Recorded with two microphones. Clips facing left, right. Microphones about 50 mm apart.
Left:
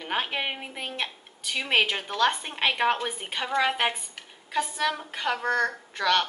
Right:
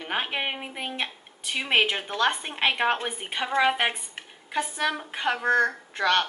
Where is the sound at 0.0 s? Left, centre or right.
Centre.